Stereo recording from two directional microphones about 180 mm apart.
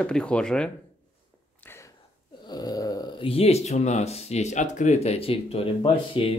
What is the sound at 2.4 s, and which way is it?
Speech, 20° left (ahead or behind).